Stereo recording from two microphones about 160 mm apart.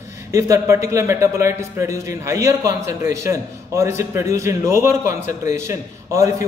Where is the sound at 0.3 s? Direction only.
20° right (ahead or behind).